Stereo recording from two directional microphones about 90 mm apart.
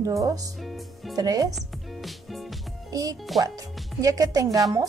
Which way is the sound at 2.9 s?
45° right (ahead or behind).